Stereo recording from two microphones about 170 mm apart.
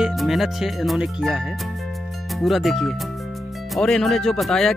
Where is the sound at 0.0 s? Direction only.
Centre (ahead or behind).